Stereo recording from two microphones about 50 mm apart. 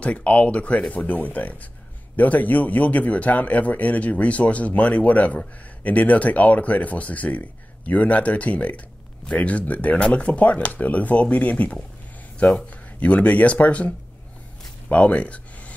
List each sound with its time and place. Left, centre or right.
0.0 s speech: left